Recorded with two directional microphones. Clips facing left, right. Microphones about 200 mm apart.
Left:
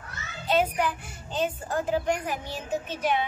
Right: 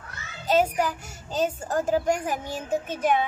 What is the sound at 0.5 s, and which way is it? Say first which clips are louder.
A child's voice: right 2 dB; 40° right (ahead or behind).